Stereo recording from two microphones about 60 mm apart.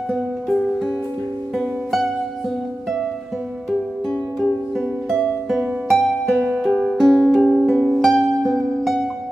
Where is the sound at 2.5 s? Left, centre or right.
Centre.